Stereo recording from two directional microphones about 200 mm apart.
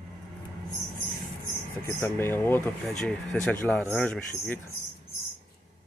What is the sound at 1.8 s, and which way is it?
Speech, 15° left (ahead or behind).